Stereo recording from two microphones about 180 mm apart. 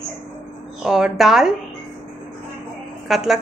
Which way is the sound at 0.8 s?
Centre (ahead or behind).